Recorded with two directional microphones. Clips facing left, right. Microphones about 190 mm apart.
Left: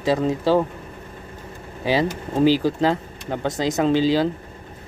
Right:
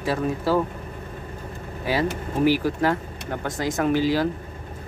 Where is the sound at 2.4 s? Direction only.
25° left (ahead or behind).